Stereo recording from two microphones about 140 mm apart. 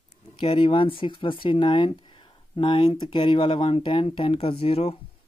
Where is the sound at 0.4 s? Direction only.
40° left (ahead or behind).